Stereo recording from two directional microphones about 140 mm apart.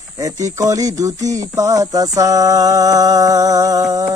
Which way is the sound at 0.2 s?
25° right (ahead or behind).